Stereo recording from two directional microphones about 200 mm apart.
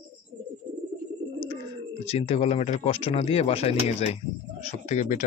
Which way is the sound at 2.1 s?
30° left (ahead or behind).